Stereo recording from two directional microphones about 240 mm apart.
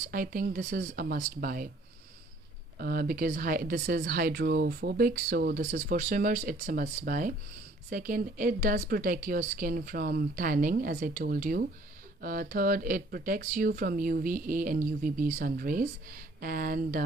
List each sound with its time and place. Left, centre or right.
0.1 s speech: right
2.8 s speech: right